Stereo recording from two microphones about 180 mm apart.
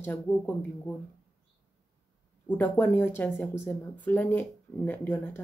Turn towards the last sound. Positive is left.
turn(degrees=10)  # may be behind; listen again after turning